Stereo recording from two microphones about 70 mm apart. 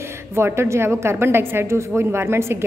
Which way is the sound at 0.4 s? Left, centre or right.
Right.